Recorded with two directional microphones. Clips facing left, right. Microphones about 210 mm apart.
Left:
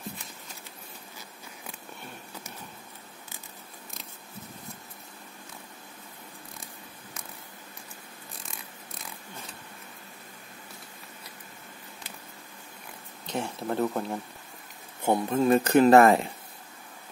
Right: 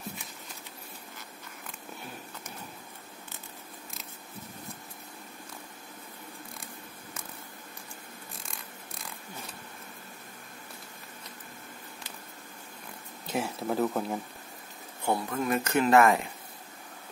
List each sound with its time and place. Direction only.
13.3 s speech: 5° right (ahead or behind)
15.0 s speech: 20° left (ahead or behind)